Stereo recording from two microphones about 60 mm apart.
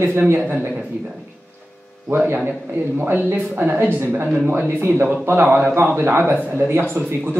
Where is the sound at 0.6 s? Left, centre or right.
Right.